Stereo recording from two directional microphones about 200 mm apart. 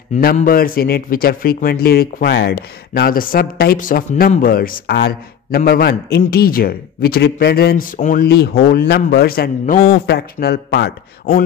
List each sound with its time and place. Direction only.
0.2 s a man's voice: 45° left (ahead or behind)